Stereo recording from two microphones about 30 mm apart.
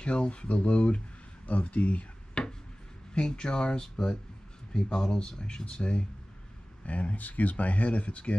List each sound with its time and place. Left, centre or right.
0.0 s speech: left
1.5 s speech: left
2.4 s a sound: left
3.2 s speech: left
6.9 s speech: left